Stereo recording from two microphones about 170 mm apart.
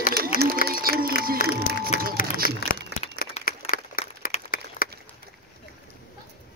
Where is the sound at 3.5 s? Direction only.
60° left (ahead or behind).